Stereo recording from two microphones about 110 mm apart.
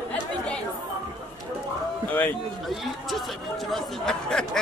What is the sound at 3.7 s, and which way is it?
Speech, 5° left (ahead or behind).